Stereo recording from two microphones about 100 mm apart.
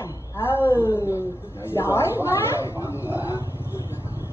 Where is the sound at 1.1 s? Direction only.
25° left (ahead or behind).